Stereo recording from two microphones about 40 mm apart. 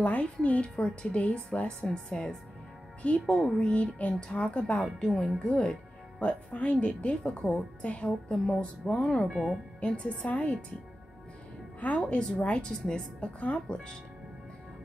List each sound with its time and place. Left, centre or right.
0.0 s a woman's voice: left
1.2 s a woman's voice: left
1.9 s speech: centre
3.0 s a woman's voice: left
5.0 s speech: centre
7.8 s a woman's voice: left
8.3 s a woman's voice: left
11.8 s a woman's voice: left